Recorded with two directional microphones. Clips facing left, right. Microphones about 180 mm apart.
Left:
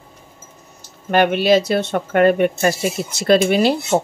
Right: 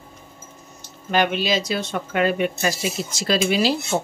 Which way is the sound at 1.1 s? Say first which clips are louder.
Left 7 dB; 55° left (ahead or behind).